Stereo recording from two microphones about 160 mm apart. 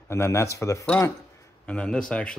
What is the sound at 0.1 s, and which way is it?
Speech, 15° left (ahead or behind).